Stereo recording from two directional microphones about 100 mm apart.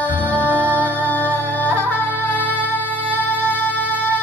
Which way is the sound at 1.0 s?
15° left (ahead or behind).